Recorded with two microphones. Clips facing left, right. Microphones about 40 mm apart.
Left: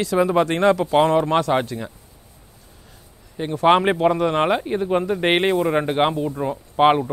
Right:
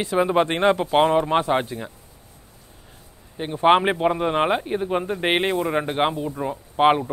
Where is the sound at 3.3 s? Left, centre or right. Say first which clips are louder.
Left 1 dB; right.